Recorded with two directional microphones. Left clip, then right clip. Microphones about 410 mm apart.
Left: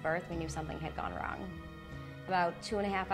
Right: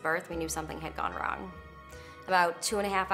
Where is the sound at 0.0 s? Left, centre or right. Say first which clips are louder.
Right 4 dB; left.